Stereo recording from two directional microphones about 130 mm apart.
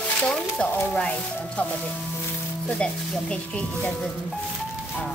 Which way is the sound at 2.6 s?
10° left (ahead or behind).